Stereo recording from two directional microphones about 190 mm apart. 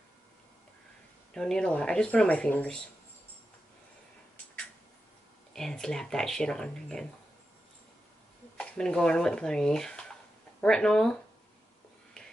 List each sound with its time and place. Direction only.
1.3 s speech: 5° left (ahead or behind)
5.5 s speech: 5° left (ahead or behind)
8.5 s speech: 5° left (ahead or behind)